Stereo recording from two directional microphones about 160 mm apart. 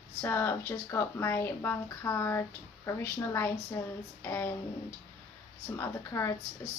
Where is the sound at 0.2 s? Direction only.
15° left (ahead or behind).